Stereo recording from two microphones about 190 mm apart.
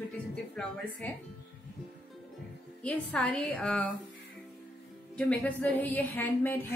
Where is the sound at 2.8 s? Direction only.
5° left (ahead or behind).